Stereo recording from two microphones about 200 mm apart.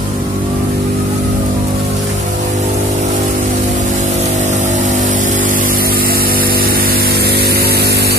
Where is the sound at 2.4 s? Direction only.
40° right (ahead or behind).